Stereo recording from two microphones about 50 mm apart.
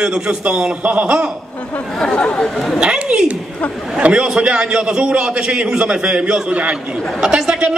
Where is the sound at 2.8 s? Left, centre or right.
Centre.